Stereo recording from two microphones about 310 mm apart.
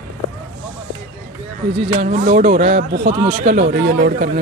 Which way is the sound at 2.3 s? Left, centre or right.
Right.